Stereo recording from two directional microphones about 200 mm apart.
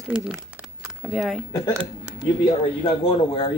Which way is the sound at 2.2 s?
25° left (ahead or behind).